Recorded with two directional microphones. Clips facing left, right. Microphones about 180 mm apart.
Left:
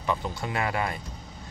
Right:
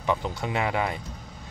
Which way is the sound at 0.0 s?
15° right (ahead or behind).